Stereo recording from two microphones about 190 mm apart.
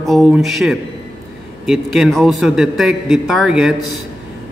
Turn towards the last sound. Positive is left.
turn(degrees=0)  # may be behind; listen again after turning